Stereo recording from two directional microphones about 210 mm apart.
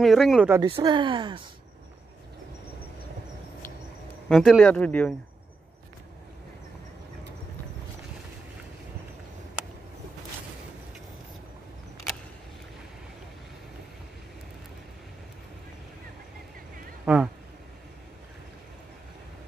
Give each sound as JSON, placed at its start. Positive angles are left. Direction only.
{"t": 0.0, "sound": "speech", "side_deg": 0}
{"t": 0.5, "sound": "speech", "side_deg": -20}
{"t": 4.3, "sound": "speech", "side_deg": 0}
{"t": 17.0, "sound": "speech", "side_deg": -5}